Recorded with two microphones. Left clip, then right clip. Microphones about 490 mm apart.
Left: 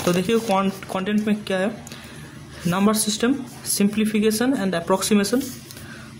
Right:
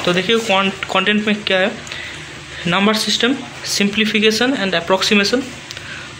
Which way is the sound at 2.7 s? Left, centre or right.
Left.